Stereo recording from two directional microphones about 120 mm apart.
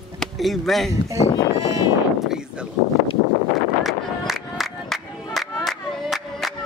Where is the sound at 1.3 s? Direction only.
35° left (ahead or behind).